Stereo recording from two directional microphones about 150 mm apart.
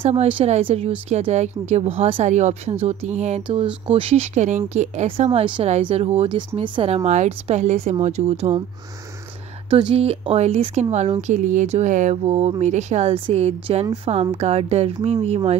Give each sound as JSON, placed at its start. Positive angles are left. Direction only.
{"t": 0.0, "sound": "speech", "side_deg": -40}
{"t": 3.4, "sound": "speech", "side_deg": -35}
{"t": 9.7, "sound": "speech", "side_deg": -35}